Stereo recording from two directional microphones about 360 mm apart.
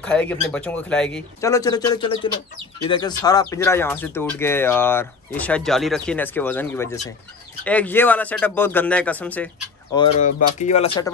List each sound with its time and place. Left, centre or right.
0.0 s speech: centre
9.9 s speech: centre